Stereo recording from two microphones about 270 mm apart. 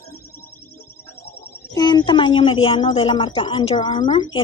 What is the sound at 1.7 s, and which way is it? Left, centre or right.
A woman's voice, centre.